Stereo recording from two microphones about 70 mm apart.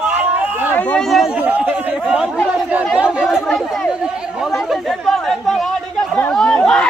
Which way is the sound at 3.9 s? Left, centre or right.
Centre.